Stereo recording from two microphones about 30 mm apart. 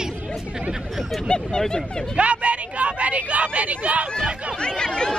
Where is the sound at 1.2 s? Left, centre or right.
Left.